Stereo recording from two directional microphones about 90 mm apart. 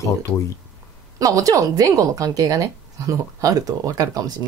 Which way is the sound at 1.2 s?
40° right (ahead or behind).